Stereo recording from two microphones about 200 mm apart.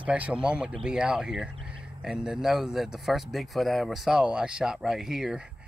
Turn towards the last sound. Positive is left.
turn(degrees=-5)  # may be behind; listen again after turning